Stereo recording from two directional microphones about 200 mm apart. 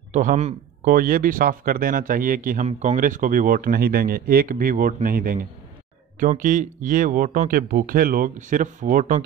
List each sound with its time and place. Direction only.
0.1 s speech: 40° right (ahead or behind)